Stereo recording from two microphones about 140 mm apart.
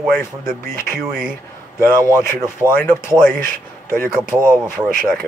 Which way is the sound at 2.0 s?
20° left (ahead or behind).